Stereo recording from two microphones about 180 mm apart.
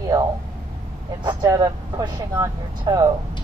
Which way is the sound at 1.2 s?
20° right (ahead or behind).